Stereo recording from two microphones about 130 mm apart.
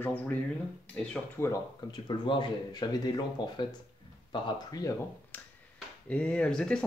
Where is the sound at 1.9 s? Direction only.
35° left (ahead or behind).